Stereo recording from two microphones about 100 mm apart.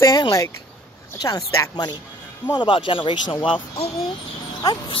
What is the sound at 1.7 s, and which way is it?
Speech, 45° left (ahead or behind).